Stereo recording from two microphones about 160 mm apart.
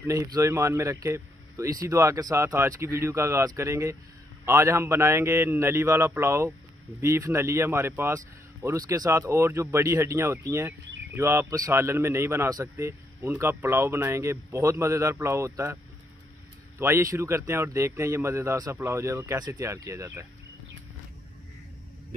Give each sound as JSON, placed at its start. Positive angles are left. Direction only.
{"t": 0.0, "sound": "a man's voice", "side_deg": -20}